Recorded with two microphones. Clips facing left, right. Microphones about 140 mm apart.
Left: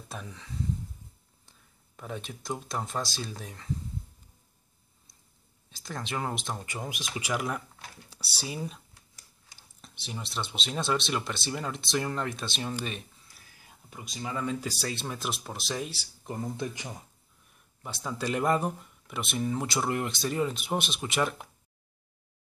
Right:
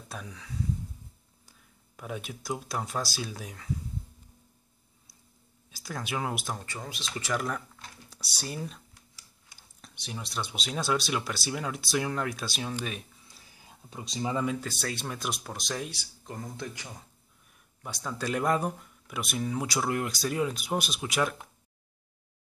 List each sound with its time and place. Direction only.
0.1 s speech: centre (ahead or behind)
2.0 s speech: 5° right (ahead or behind)
5.7 s speech: 5° right (ahead or behind)
6.6 s speech: 15° left (ahead or behind); by 12.7 s 5° right (ahead or behind)
13.3 s a sound: 25° right (ahead or behind)
14.6 s speech: 10° left (ahead or behind)
16.5 s speech: 15° left (ahead or behind)
18.0 s speech: 5° left (ahead or behind)